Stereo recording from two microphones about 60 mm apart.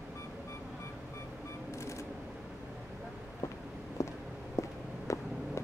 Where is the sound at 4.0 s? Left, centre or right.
Left.